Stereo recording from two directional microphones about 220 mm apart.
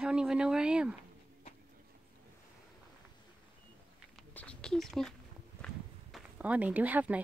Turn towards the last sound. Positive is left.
turn(degrees=-5)  # may be behind; listen again after turning